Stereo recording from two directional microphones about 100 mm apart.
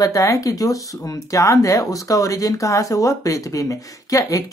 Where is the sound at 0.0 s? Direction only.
35° left (ahead or behind).